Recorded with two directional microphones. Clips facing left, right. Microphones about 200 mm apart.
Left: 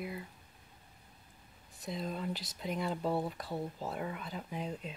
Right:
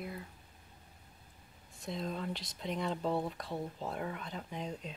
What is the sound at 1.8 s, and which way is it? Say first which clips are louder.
Speech: even; centre (ahead or behind).